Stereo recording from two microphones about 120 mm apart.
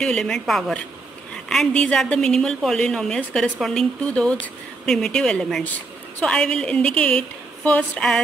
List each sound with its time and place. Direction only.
0.0 s a woman's voice: 5° left (ahead or behind)